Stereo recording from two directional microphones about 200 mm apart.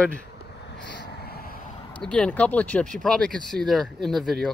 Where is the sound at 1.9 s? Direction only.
5° left (ahead or behind).